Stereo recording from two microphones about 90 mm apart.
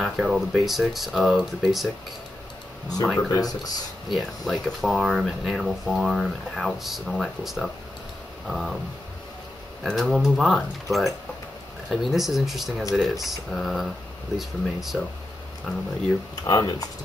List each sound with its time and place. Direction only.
0.0 s speech: 5° right (ahead or behind)
3.2 s speech: 45° left (ahead or behind)
4.1 s speech: centre (ahead or behind)
9.8 s speech: centre (ahead or behind)
16.4 s speech: 50° left (ahead or behind)